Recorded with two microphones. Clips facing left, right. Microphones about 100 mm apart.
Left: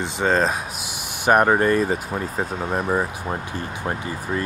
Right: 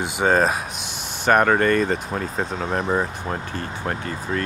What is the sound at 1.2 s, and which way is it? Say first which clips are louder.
Speech: left 1 dB; 15° left (ahead or behind).